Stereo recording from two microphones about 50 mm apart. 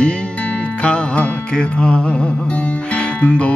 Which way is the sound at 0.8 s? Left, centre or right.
Left.